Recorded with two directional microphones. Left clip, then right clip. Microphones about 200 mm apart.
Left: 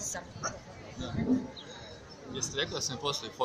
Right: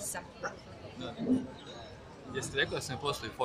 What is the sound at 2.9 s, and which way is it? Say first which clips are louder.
Speech: left 1 dB; 5° right (ahead or behind).